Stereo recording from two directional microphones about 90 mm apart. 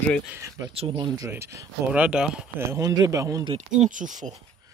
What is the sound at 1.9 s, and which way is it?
Speech, 10° right (ahead or behind).